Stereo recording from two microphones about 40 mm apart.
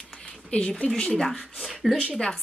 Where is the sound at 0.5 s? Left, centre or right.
Left.